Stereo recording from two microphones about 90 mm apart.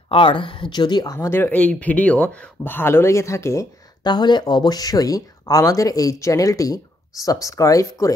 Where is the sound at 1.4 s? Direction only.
15° left (ahead or behind); by 3.6 s 35° left (ahead or behind).